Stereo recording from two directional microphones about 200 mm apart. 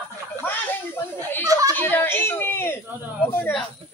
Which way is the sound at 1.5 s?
15° right (ahead or behind).